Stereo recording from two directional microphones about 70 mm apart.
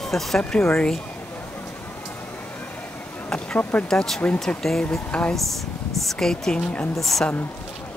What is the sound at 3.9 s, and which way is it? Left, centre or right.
Speech, centre.